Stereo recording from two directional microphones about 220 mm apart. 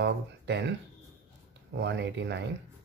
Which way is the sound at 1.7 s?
50° right (ahead or behind).